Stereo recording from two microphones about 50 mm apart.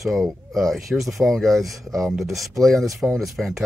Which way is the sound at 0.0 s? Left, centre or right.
Centre.